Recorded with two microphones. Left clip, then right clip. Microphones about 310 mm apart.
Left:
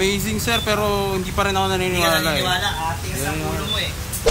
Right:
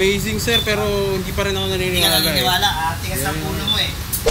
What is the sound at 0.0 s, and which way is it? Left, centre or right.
Speech, centre.